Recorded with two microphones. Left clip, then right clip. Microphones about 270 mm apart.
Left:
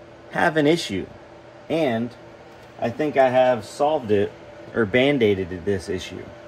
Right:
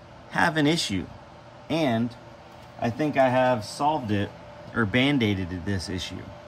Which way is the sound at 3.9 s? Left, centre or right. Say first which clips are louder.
Left 5 dB; centre.